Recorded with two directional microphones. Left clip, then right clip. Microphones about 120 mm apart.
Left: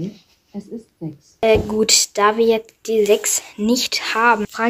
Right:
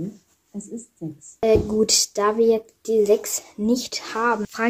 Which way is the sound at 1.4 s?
15° right (ahead or behind).